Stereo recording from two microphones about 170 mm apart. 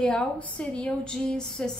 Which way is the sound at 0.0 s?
5° left (ahead or behind).